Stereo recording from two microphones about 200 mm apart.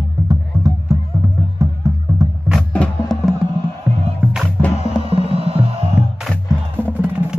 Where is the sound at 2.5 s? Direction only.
5° left (ahead or behind).